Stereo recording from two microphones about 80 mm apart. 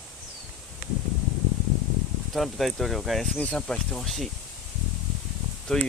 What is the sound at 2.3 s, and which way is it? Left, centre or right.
Speech, centre.